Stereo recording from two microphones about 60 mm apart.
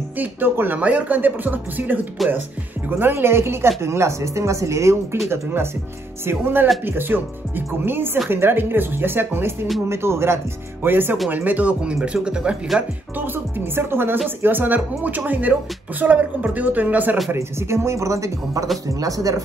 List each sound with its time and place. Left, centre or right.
0.2 s speech: right
2.2 s speech: centre
3.0 s speech: right
5.3 s speech: right; by 12.9 s centre
13.1 s speech: right
17.3 s speech: right
18.9 s speech: right